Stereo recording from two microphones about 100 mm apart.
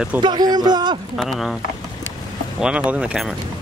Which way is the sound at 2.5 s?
10° right (ahead or behind).